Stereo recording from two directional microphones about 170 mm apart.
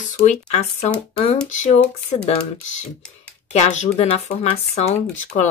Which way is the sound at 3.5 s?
40° left (ahead or behind).